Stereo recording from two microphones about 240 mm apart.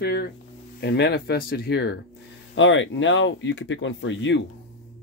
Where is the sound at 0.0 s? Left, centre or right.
Left.